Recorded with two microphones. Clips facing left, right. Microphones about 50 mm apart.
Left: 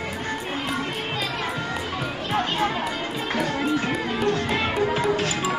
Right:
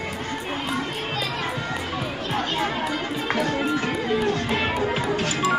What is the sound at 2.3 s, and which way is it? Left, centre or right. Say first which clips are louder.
Chatter: left 2 dB; centre.